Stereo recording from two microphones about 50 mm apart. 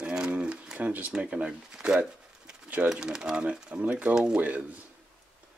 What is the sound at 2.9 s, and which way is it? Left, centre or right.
Speech, centre.